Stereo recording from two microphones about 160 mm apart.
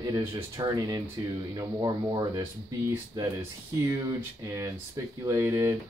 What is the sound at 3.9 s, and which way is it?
Speech, 20° right (ahead or behind).